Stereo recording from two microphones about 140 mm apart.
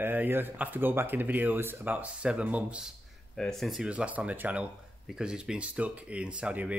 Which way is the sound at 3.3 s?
Centre (ahead or behind).